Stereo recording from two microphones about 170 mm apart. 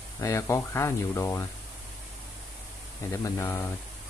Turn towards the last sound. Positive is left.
turn(degrees=15)  # may be behind; listen again after turning